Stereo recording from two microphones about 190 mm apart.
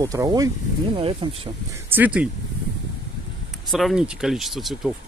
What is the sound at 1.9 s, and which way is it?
Speech, 10° right (ahead or behind).